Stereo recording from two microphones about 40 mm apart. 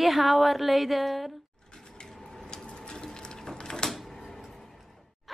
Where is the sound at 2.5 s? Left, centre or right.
Left.